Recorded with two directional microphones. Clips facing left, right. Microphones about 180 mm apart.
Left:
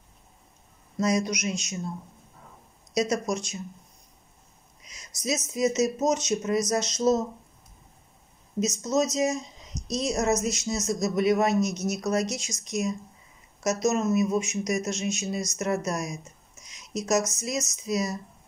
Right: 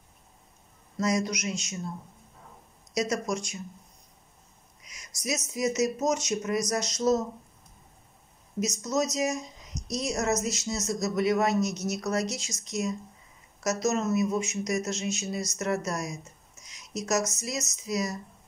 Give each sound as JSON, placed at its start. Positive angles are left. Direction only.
{"t": 0.9, "sound": "speech", "side_deg": 20}
{"t": 2.9, "sound": "speech", "side_deg": 20}
{"t": 4.8, "sound": "a sound", "side_deg": 25}
{"t": 5.5, "sound": "speech", "side_deg": 20}
{"t": 8.6, "sound": "speech", "side_deg": 35}
{"t": 9.8, "sound": "speech", "side_deg": 20}
{"t": 16.6, "sound": "a sound", "side_deg": 20}
{"t": 17.4, "sound": "speech", "side_deg": 20}